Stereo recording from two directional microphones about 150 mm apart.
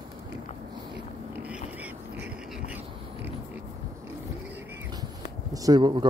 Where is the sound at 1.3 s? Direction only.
10° right (ahead or behind).